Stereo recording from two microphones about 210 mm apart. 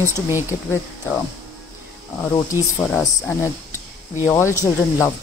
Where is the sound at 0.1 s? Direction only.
10° right (ahead or behind).